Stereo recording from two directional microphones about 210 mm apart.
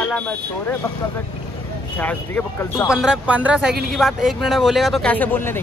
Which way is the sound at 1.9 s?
10° left (ahead or behind).